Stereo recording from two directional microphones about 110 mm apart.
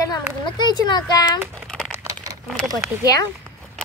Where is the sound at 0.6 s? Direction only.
40° left (ahead or behind).